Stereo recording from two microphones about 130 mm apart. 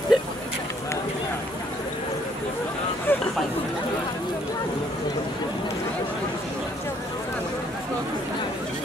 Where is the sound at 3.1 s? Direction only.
15° left (ahead or behind).